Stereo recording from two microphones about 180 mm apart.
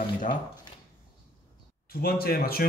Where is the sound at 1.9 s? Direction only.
55° left (ahead or behind).